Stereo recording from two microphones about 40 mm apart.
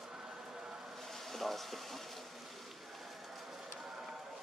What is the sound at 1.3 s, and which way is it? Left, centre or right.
Speech, centre.